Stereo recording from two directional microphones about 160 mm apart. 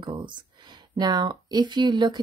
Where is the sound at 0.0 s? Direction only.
30° right (ahead or behind).